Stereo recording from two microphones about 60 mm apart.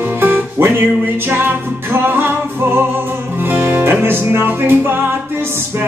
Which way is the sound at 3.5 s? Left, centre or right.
Right.